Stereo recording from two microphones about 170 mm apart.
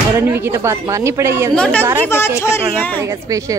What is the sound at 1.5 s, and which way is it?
A woman's voice, 5° left (ahead or behind).